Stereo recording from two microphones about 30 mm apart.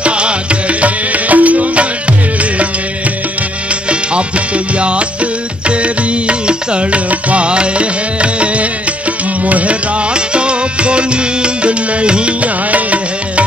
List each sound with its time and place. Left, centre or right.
0.0 s music: right
4.7 s music: right
6.9 s music: right
7.4 s music: right
9.4 s music: right
10.1 s music: right